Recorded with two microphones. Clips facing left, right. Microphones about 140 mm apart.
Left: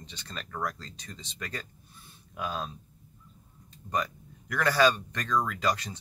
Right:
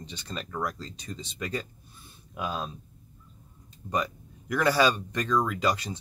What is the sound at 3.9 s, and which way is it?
Speech, 10° right (ahead or behind).